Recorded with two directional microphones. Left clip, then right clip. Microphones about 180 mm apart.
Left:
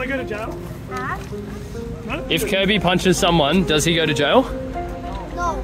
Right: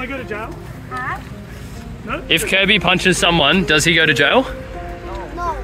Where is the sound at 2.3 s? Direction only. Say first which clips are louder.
Right 5 dB; 10° left (ahead or behind).